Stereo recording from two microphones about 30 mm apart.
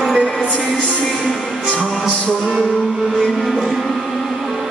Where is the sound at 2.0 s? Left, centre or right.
Left.